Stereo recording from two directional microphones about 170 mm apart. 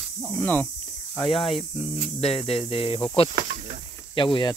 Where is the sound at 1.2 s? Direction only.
30° left (ahead or behind).